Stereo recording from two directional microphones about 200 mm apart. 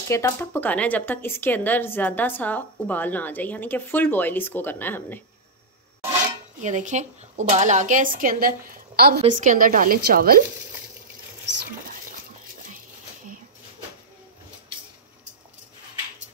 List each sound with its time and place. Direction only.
0.1 s speech: 10° left (ahead or behind)
6.6 s speech: 40° right (ahead or behind)
9.2 s a woman's voice: 40° right (ahead or behind)